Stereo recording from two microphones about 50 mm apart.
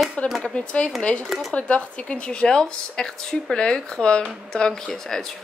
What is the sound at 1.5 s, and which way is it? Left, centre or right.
A woman's voice, left.